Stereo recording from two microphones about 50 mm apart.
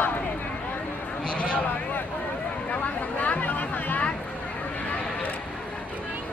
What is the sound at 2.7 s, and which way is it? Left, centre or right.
Chatter, left.